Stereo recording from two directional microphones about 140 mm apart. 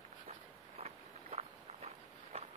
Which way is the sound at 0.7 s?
50° right (ahead or behind).